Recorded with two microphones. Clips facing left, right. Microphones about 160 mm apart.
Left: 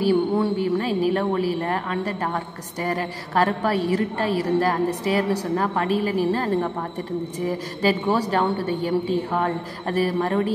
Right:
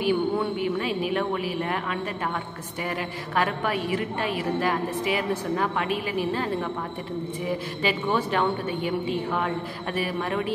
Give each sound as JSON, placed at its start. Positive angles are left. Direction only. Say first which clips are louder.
{"t": 0.0, "sound": "speech", "louder": "left 4 dB", "side_deg": 35}